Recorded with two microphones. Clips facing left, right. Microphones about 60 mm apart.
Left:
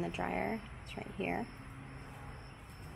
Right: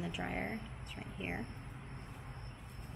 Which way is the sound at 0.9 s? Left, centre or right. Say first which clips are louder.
Left 5 dB; left.